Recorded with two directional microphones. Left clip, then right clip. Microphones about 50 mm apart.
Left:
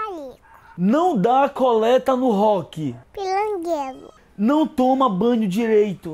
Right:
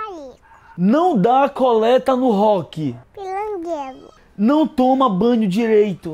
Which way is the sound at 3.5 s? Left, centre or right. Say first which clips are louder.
Left 1 dB; left.